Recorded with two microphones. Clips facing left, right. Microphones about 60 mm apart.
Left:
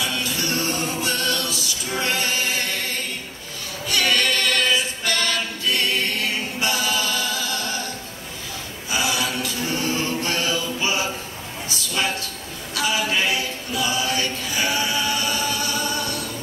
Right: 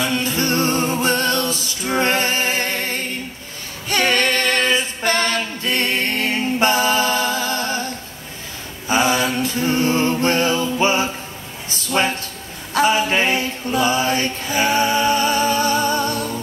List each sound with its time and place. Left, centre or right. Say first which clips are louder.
0.0 s music: right 5 dB; right
3.9 s a capella: right 3 dB; right
8.8 s mantra: right 7 dB; right
11.7 s a sound: right 5 dB; right
12.7 s chant: right 6 dB; right